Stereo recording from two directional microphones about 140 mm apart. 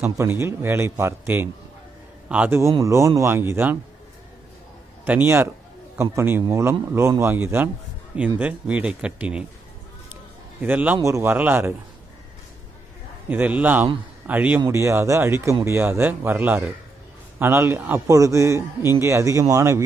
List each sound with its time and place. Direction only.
0.0 s a man's voice: 20° right (ahead or behind)
5.0 s a man's voice: 15° right (ahead or behind)
10.6 s a man's voice: 10° right (ahead or behind)
13.3 s a man's voice: 10° right (ahead or behind)